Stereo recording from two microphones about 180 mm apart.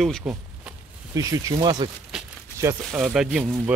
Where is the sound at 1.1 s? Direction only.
20° right (ahead or behind).